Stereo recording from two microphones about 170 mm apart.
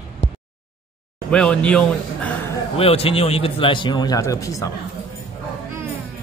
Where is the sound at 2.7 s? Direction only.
35° left (ahead or behind); by 4.7 s 20° left (ahead or behind).